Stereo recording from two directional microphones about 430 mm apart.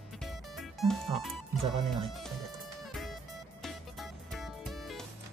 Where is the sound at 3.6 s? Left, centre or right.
Centre.